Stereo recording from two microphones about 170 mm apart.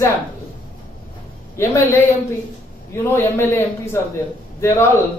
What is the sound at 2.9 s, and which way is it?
A man's voice, 15° left (ahead or behind).